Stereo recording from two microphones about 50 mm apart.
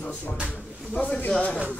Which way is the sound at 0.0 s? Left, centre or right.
Left.